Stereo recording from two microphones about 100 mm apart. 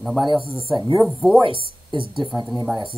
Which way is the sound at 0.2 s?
50° right (ahead or behind).